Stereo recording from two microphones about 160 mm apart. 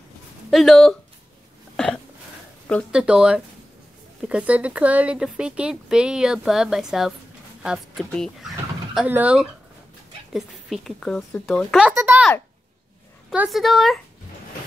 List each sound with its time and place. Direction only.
0.5 s speech: centre (ahead or behind)
2.9 s speech: 5° right (ahead or behind)
11.9 s speech: 15° right (ahead or behind)
13.3 s speech: 5° right (ahead or behind)